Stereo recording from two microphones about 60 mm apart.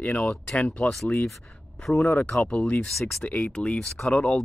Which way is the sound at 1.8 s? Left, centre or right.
Centre.